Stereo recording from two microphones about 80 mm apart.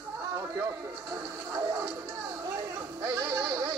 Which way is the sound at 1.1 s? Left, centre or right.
Right.